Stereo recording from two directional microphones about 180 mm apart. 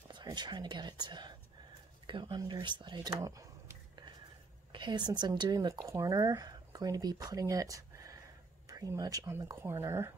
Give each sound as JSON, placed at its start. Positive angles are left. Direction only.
{"t": 0.1, "sound": "speech", "side_deg": -25}